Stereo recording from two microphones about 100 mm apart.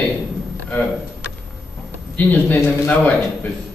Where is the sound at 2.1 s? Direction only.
20° left (ahead or behind).